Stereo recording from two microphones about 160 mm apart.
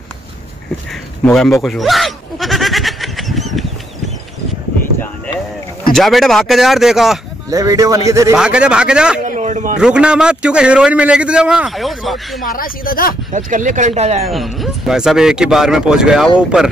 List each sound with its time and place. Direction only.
1.2 s a sound: 5° left (ahead or behind)
5.9 s a man's voice: centre (ahead or behind)
7.4 s a man's voice: 20° right (ahead or behind)
8.4 s a man's voice: 5° right (ahead or behind)
9.2 s a sound: 50° right (ahead or behind)
9.8 s a man's voice: 5° right (ahead or behind)
12.4 s speech: 65° left (ahead or behind)
13.3 s speech: 55° right (ahead or behind)
14.2 s a man's voice: centre (ahead or behind)